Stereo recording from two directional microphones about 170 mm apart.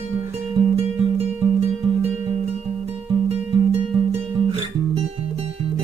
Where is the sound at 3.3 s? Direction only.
35° right (ahead or behind).